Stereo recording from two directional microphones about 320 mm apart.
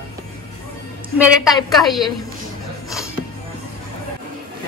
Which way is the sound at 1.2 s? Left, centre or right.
Centre.